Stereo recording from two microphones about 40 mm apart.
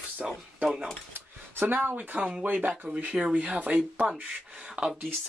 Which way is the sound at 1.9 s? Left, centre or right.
Right.